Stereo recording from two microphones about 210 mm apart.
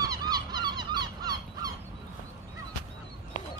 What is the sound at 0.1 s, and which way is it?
Honk, 20° right (ahead or behind).